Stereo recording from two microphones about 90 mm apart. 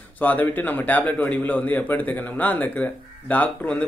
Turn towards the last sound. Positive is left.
turn(degrees=15)  # may be behind; listen again after turning